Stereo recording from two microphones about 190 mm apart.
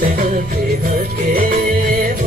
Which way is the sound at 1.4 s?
50° right (ahead or behind).